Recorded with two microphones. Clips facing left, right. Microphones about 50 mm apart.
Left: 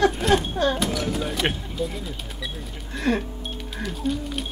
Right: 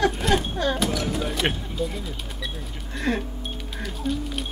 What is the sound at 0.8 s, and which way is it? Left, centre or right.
Speech, centre.